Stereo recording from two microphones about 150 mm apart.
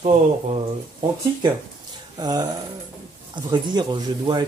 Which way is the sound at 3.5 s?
30° right (ahead or behind).